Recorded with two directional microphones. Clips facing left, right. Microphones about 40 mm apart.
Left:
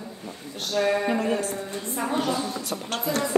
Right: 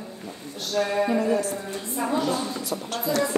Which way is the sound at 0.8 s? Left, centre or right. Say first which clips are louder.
Even; centre.